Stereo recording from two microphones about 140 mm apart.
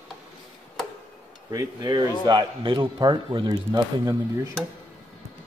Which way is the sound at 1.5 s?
30° right (ahead or behind).